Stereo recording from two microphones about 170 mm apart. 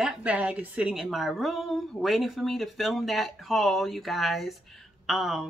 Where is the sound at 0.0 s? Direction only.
5° right (ahead or behind).